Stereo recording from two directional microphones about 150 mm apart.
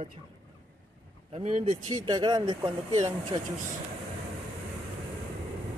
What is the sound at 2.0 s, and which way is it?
Speech, 25° right (ahead or behind).